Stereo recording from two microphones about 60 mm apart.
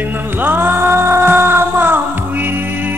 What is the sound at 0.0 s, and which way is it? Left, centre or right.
Music, right.